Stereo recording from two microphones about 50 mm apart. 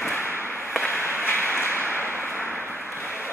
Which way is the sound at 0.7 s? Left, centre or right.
Left.